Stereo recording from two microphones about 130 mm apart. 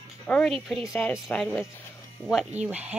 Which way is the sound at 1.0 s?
20° left (ahead or behind).